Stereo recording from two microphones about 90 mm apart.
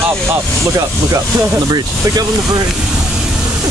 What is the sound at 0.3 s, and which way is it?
Speech, 35° right (ahead or behind).